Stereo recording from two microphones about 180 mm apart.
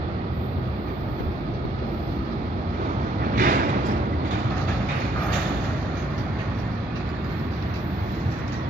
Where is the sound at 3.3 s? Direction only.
50° right (ahead or behind).